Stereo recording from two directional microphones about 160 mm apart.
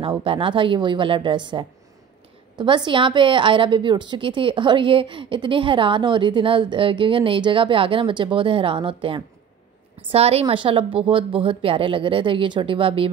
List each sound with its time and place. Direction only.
0.2 s a woman's voice: 35° right (ahead or behind)